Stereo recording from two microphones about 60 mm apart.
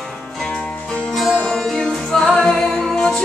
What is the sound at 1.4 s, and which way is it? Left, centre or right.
A capella, centre.